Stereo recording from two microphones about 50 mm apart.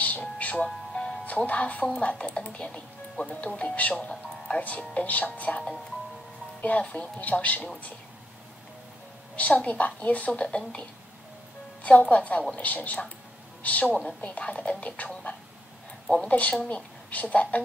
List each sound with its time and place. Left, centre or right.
0.0 s music: left
0.7 s music: centre
1.2 s speech: left
6.6 s speech: left
9.4 s speech: left
11.8 s speech: left
16.3 s speech: left